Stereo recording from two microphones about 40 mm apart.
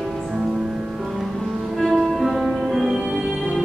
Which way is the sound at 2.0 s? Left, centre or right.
Centre.